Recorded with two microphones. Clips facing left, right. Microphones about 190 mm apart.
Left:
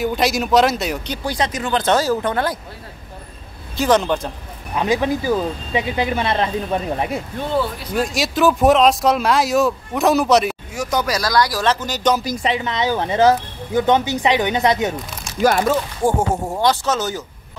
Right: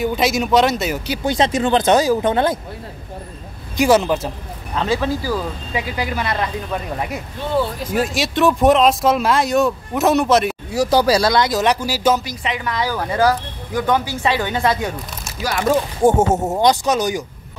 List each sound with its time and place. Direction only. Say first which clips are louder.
0.0 s speech: right 1 dB; centre (ahead or behind)
1.2 s speech: right 6 dB; 25° right (ahead or behind)
1.8 s speech: right 1 dB; 15° right (ahead or behind)
3.7 s speech: right 2 dB; 10° right (ahead or behind)
4.7 s speech: left 1 dB; 15° left (ahead or behind)
7.9 s speech: even; centre (ahead or behind)
10.7 s speech: right 8 dB; 35° right (ahead or behind); by 12.2 s 5° right (ahead or behind)
12.4 s speech: left 2 dB; 25° left (ahead or behind)
15.6 s speech: right 3 dB; 20° right (ahead or behind)